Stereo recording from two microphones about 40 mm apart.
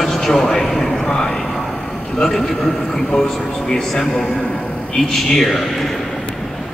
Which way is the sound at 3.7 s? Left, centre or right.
Centre.